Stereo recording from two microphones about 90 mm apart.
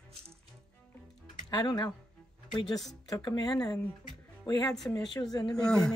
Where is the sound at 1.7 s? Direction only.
50° left (ahead or behind).